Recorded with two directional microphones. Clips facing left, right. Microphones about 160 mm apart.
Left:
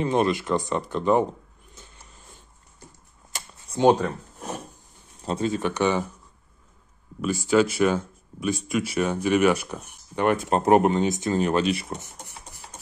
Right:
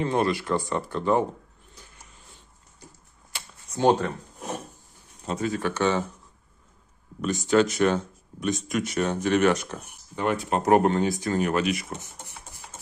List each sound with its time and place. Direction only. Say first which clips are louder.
0.0 s speech: left 2 dB; 20° left (ahead or behind)
1.8 s a sound: left 2 dB; 25° left (ahead or behind)
3.3 s a sound: left 3 dB; 40° left (ahead or behind)
3.7 s speech: left 3 dB; 30° left (ahead or behind)
5.2 s speech: left 2 dB; 30° left (ahead or behind)
7.2 s speech: left 1 dB; 5° left (ahead or behind)
10.1 s speech: left 3 dB; 55° left (ahead or behind)
10.6 s speech: even; 20° left (ahead or behind)